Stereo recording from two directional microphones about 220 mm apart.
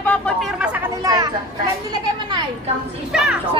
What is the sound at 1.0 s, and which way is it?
Speech, 15° right (ahead or behind).